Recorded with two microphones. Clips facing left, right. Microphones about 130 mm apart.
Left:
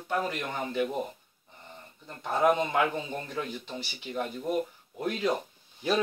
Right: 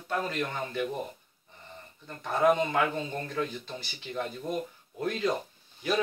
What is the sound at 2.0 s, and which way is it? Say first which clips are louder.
Speech: even; 20° left (ahead or behind).